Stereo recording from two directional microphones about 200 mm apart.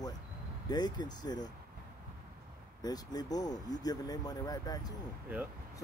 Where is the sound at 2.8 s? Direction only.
20° left (ahead or behind).